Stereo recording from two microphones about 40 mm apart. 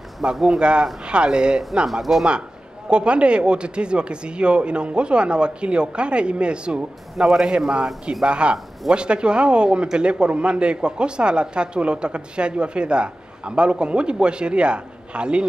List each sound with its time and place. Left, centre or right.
0.2 s speech: centre
0.6 s speech: right
1.9 s speech: centre
2.9 s speech: right